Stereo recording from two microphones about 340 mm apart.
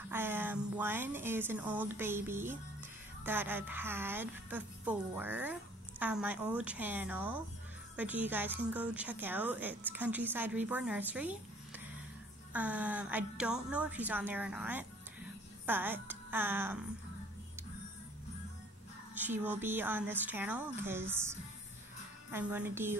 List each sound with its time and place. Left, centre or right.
0.1 s a woman's voice: centre
19.1 s a woman's voice: centre